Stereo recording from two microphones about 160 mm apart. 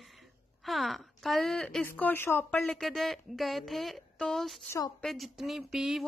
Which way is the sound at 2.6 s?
Centre (ahead or behind).